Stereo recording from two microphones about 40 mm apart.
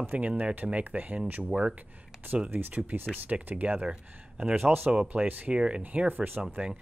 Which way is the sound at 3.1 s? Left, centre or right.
Right.